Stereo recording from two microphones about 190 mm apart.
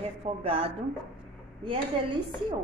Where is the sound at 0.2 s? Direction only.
30° right (ahead or behind).